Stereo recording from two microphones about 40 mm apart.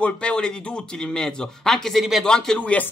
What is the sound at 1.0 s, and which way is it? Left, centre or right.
A man's voice, centre.